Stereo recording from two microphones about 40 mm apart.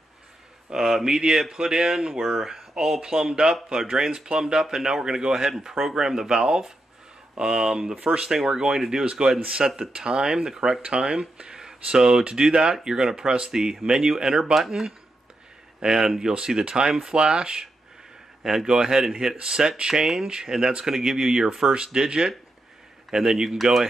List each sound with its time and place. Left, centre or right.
0.7 s speech: centre
9.0 s speech: right
10.9 s speech: right; by 23.9 s centre